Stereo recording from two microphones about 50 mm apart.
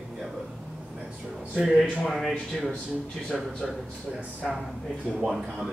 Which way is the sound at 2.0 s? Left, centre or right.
Centre.